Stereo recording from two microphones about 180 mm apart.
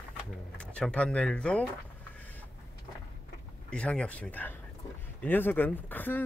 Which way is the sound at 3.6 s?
5° left (ahead or behind).